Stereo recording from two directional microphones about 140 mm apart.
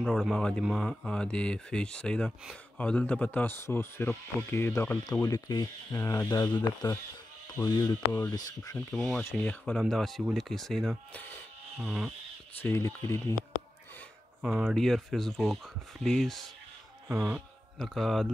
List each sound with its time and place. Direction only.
0.0 s speech: centre (ahead or behind); by 8.3 s 20° left (ahead or behind)
8.8 s speech: 5° left (ahead or behind)
11.8 s speech: 10° right (ahead or behind)
12.6 s speech: 15° left (ahead or behind)
14.4 s speech: 10° right (ahead or behind)
14.8 s speech: centre (ahead or behind)
17.1 s speech: 10° right (ahead or behind)
17.7 s speech: centre (ahead or behind)